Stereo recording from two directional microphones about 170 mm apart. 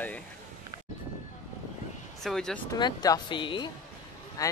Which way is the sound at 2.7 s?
25° left (ahead or behind).